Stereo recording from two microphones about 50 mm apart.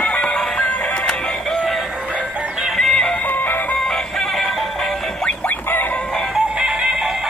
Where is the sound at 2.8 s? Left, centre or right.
Centre.